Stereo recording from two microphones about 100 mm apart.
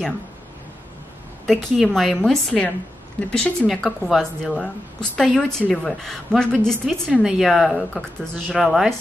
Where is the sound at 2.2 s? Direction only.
10° left (ahead or behind).